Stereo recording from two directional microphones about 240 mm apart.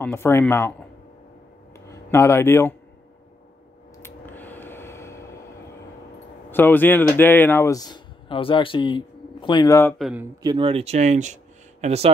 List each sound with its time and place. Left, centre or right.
0.0 s speech: centre
1.9 s speech: centre
4.0 s a sound: centre
6.5 s speech: centre
10.4 s speech: centre